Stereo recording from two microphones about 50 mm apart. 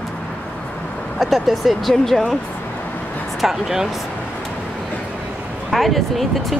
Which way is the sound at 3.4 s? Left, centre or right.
Centre.